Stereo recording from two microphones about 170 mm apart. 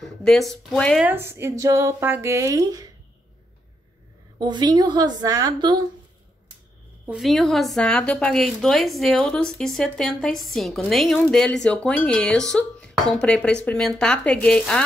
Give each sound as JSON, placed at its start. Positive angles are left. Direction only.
{"t": 0.0, "sound": "speech", "side_deg": 0}
{"t": 1.0, "sound": "speech", "side_deg": -15}
{"t": 4.4, "sound": "a woman's voice", "side_deg": -25}
{"t": 7.1, "sound": "a woman's voice", "side_deg": 0}